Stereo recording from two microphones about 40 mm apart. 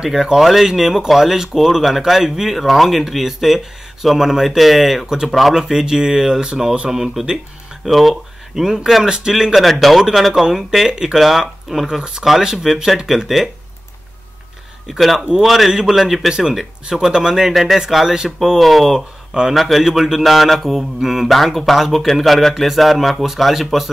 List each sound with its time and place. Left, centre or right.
0.4 s speech: centre
5.6 s speech: centre
6.9 s speech: centre
9.6 s speech: centre
10.9 s speech: right
11.1 s speech: centre
12.0 s speech: centre
15.0 s speech: centre
15.7 s speech: centre
16.0 s speech: centre
16.3 s speech: centre
18.6 s speech: centre
18.9 s speech: centre
19.5 s speech: centre